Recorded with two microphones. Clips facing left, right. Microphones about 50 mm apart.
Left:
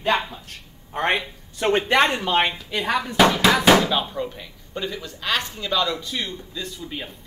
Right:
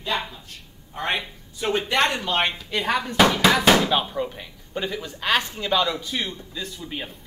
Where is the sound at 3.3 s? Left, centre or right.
Centre.